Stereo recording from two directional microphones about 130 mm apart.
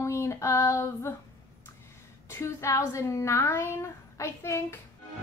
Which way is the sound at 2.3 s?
20° left (ahead or behind).